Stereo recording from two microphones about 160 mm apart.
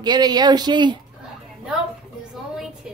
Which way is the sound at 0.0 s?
25° right (ahead or behind).